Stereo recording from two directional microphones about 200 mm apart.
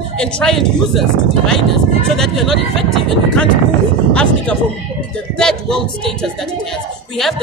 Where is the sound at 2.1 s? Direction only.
Centre (ahead or behind).